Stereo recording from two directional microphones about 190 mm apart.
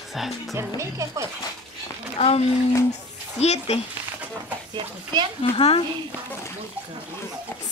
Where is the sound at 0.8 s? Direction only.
15° right (ahead or behind).